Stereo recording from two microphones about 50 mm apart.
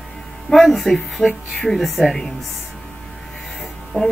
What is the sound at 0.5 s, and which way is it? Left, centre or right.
Speech, centre.